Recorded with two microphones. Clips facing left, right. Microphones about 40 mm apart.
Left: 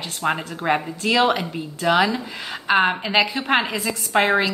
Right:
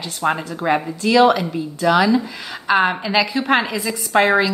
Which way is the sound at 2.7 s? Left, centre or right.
Centre.